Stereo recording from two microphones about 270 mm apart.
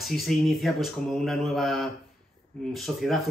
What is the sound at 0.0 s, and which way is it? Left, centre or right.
Speech, centre.